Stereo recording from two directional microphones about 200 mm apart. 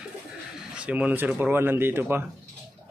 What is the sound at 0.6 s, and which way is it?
Speech, 5° right (ahead or behind).